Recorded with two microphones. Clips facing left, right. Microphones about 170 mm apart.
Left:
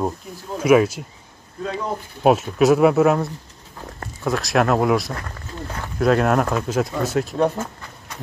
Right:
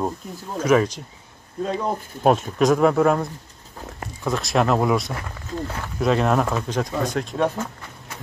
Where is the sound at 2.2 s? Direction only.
5° left (ahead or behind).